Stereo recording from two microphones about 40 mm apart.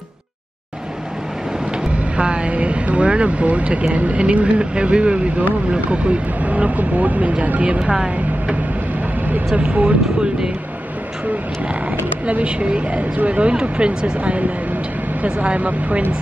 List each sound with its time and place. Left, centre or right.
2.1 s speech: right
7.8 s a woman's voice: centre
9.6 s speech: right
12.3 s speech: right